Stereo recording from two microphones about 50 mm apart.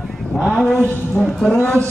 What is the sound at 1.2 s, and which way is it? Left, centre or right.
Speech, centre.